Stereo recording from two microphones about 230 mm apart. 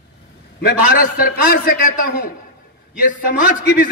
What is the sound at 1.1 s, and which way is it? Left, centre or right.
Speech, left.